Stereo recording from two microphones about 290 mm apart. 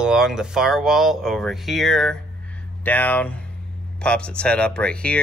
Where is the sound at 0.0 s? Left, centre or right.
Centre.